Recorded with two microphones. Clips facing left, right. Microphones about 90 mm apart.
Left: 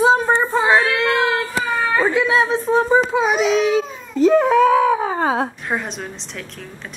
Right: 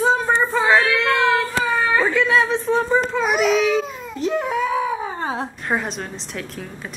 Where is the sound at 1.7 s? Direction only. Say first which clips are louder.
Left 2 dB; 5° left (ahead or behind).